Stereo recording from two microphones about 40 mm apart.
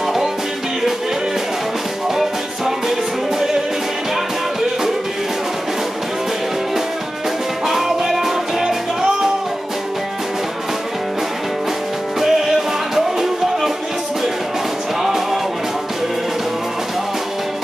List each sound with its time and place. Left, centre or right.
7.6 s music: centre
12.2 s music: centre
15.0 s music: centre